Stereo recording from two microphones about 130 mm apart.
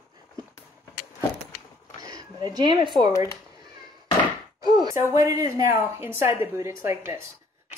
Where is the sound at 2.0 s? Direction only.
30° right (ahead or behind).